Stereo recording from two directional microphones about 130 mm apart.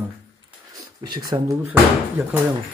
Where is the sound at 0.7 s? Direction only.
35° right (ahead or behind).